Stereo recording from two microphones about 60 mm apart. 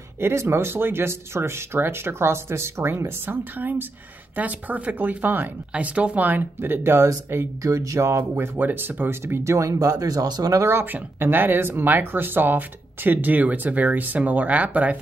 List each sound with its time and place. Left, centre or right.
0.2 s speech: right
3.3 s speech: right
7.6 s speech: right
8.2 s speech: right
9.2 s speech: right
10.6 s speech: right